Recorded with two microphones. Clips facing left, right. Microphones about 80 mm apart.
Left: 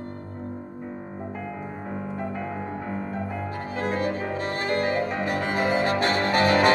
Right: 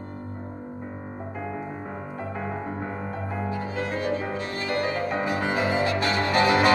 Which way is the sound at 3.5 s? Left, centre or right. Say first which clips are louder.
Left 2 dB; left.